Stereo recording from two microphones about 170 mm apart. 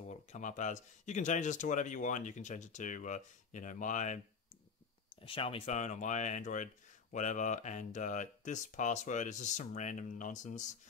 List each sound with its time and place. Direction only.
0.3 s speech: 45° left (ahead or behind)
5.2 s speech: 30° left (ahead or behind)